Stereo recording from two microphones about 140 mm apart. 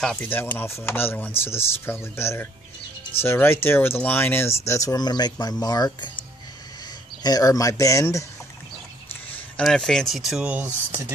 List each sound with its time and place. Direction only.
0.0 s speech: 5° left (ahead or behind); by 6.1 s 30° left (ahead or behind)
7.2 s speech: 25° left (ahead or behind)
9.6 s speech: 5° left (ahead or behind)